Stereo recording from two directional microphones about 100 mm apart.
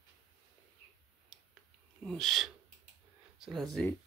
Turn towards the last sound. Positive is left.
turn(degrees=0)  # may be behind; listen again after turning